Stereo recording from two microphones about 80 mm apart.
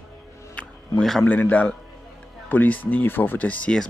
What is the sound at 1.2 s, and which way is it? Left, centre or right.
Speech, left.